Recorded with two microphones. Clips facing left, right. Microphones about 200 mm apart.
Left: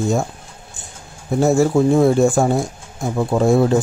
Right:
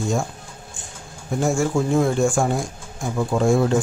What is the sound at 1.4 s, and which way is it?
Speech, 35° left (ahead or behind).